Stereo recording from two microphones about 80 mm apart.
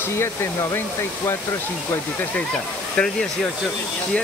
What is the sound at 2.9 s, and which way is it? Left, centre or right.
Speech, centre.